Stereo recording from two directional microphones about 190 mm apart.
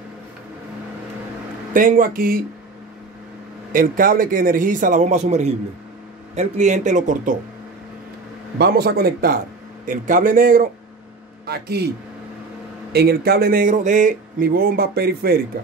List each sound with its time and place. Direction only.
1.7 s speech: 45° right (ahead or behind)
3.7 s speech: 45° right (ahead or behind)
8.5 s speech: 55° right (ahead or behind)
11.4 s speech: 55° right (ahead or behind)
12.9 s speech: 55° right (ahead or behind)